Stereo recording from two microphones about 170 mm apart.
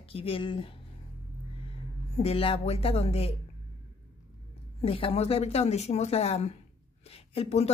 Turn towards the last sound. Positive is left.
turn(degrees=40)  # may be behind; listen again after turning